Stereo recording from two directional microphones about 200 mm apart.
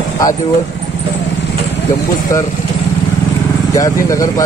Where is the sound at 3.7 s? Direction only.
15° left (ahead or behind).